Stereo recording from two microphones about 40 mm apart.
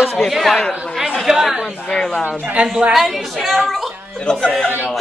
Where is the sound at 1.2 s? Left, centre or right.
Centre.